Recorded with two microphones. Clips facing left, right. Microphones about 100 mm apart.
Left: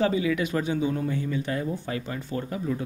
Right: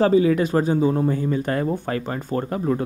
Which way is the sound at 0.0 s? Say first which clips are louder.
Right 7 dB; 40° right (ahead or behind).